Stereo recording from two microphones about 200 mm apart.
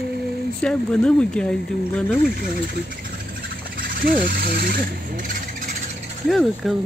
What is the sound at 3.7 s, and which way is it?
Speech, 45° right (ahead or behind).